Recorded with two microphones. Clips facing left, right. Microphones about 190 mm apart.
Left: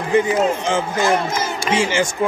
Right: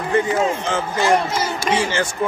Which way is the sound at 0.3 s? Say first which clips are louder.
Left 2 dB; 15° left (ahead or behind).